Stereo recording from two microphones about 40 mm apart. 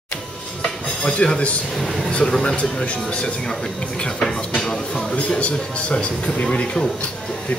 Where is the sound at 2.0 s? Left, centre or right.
Centre.